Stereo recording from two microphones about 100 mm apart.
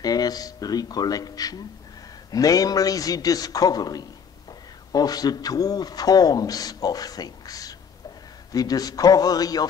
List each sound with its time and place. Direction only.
0.0 s a man's voice: 40° left (ahead or behind)